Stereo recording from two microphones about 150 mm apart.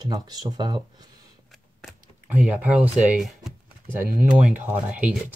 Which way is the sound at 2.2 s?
10° right (ahead or behind).